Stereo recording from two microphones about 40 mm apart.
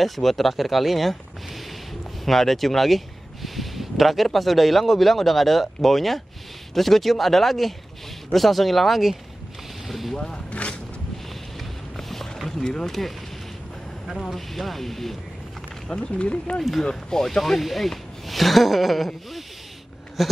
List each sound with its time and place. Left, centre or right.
0.0 s speech: centre
2.2 s speech: centre
9.8 s vehicle: centre
10.1 s speech: centre
10.5 s a sound: left
12.0 s a sound: centre
12.6 s speech: centre
14.2 s speech: centre
15.9 s speech: left
16.8 s speech: centre
17.4 s speech: centre